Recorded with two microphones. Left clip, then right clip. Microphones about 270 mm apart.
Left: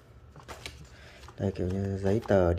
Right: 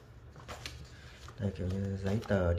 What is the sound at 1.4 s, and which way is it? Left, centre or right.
Speech, centre.